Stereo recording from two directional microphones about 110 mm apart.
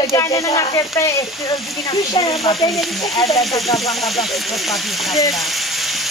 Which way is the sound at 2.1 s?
60° left (ahead or behind).